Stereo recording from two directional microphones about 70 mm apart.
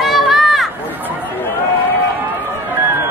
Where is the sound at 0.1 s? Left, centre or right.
Centre.